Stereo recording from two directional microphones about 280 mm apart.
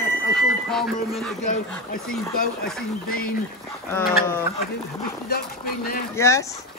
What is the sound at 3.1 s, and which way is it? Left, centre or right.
Speech, left.